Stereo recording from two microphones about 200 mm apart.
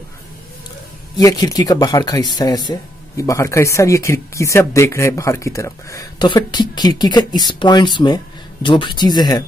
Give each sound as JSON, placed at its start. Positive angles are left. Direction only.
{"t": 1.1, "sound": "speech", "side_deg": 20}